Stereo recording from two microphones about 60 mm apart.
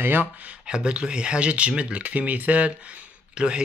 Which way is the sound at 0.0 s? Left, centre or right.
Right.